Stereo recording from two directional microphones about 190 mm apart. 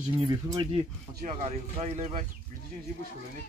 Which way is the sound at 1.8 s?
40° right (ahead or behind).